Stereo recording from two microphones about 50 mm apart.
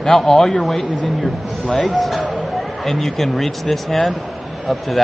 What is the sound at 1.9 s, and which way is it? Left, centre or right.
A man's voice, centre.